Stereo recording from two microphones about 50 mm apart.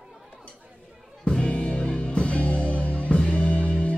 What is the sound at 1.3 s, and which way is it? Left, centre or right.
Music, left.